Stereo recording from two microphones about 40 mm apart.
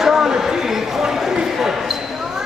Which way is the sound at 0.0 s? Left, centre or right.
Centre.